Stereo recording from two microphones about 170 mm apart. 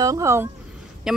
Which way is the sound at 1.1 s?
Centre (ahead or behind).